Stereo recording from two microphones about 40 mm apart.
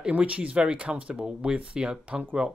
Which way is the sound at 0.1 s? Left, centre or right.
Right.